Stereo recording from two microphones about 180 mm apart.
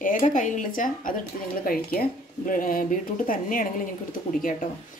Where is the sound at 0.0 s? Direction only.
45° left (ahead or behind).